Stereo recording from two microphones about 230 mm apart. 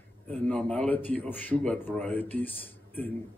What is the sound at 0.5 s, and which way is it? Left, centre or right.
Speech, centre.